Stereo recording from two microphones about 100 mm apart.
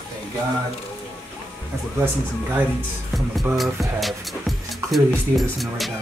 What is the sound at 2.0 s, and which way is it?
Speech, 20° right (ahead or behind).